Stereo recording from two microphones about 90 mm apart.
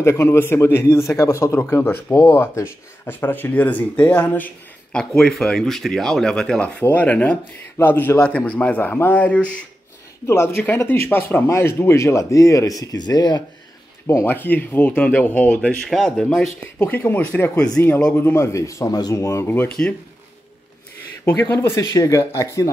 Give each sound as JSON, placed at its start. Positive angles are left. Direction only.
{"t": 0.0, "sound": "speech", "side_deg": 30}
{"t": 4.9, "sound": "speech", "side_deg": 5}
{"t": 10.2, "sound": "speech", "side_deg": 30}
{"t": 14.2, "sound": "speech", "side_deg": 20}
{"t": 16.8, "sound": "speech", "side_deg": 25}
{"t": 19.2, "sound": "speech", "side_deg": 25}
{"t": 21.3, "sound": "speech", "side_deg": 25}